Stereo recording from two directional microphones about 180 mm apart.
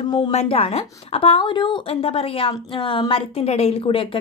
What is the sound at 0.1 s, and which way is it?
A woman's voice, 30° left (ahead or behind).